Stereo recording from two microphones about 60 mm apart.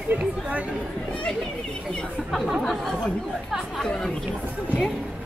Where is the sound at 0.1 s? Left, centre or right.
Right.